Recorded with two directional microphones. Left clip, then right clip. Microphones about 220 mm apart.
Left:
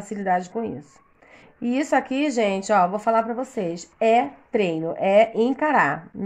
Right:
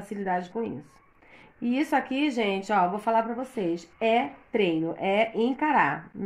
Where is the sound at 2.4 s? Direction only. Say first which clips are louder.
Left 6 dB; 40° left (ahead or behind).